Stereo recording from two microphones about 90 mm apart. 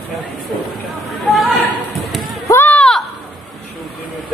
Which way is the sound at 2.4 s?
30° left (ahead or behind).